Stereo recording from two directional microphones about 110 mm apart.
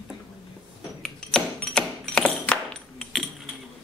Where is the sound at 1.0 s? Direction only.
5° left (ahead or behind).